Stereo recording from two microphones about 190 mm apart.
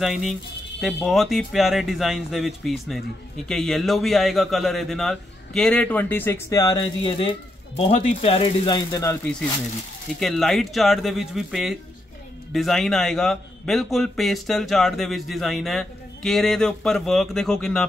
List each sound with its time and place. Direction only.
0.0 s a man's voice: centre (ahead or behind); by 6.8 s 20° left (ahead or behind)
7.0 s speech: 30° left (ahead or behind)
10.2 s a man's voice: centre (ahead or behind)